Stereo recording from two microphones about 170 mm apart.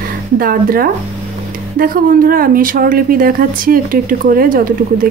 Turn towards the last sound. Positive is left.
turn(degrees=-55)  # may be behind; listen again after turning